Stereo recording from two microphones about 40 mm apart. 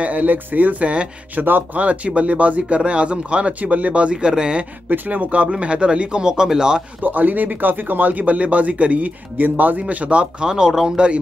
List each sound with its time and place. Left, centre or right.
0.0 s speech: right
1.3 s speech: right
1.8 s speech: right
4.1 s speech: right
4.9 s speech: right; by 6.8 s centre
7.0 s speech: right
10.4 s speech: centre